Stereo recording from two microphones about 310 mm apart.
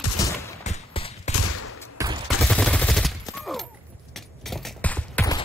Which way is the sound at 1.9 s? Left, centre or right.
Centre.